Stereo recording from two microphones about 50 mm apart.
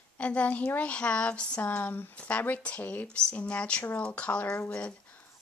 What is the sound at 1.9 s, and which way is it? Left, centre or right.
Speech, left.